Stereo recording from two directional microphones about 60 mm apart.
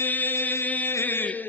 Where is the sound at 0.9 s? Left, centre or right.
Left.